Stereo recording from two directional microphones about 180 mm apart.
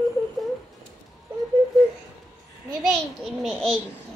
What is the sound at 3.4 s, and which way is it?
Speech, centre (ahead or behind).